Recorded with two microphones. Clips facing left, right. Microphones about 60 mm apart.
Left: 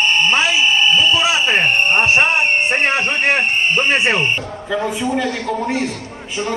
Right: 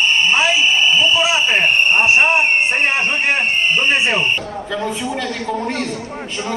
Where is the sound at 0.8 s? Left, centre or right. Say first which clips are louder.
Even; centre.